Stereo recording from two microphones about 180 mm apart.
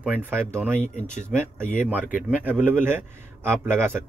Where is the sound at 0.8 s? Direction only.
40° left (ahead or behind).